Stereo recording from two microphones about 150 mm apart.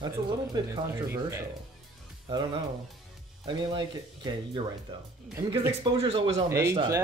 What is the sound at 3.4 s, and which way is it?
Speech, 30° right (ahead or behind).